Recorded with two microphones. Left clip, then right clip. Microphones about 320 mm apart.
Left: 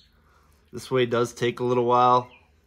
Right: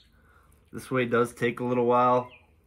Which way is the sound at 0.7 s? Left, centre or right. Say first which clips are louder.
Left 2 dB; centre.